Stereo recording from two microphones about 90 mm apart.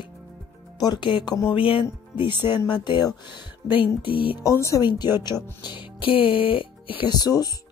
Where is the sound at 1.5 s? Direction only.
85° left; by 3.2 s 55° left (ahead or behind).